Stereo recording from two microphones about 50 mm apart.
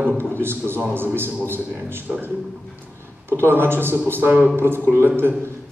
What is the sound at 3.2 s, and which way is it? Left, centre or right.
A man's voice, right.